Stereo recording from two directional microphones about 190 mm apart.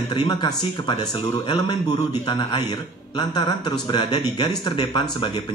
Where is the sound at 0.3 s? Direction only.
20° left (ahead or behind).